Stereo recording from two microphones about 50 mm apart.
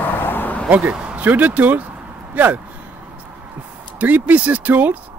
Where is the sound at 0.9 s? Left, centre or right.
Right.